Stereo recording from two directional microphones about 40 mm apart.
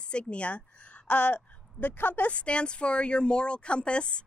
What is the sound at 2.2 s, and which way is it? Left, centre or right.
Speech, left.